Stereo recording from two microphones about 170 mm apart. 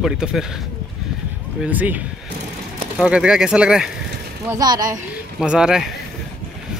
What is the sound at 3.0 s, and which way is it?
Speech, 5° right (ahead or behind).